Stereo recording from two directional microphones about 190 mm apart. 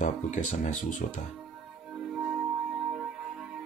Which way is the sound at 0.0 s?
40° left (ahead or behind).